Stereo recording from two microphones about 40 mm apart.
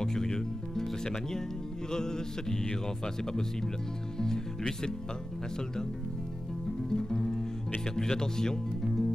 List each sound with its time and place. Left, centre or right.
0.0 s music: centre
1.9 s mantra: centre
4.2 s music: centre
6.9 s music: centre
7.9 s speech: centre